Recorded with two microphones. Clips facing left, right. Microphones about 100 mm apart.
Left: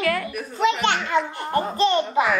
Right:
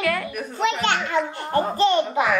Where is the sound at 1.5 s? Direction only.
20° right (ahead or behind).